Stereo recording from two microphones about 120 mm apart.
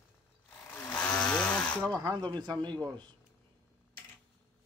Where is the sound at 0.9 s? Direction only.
10° left (ahead or behind).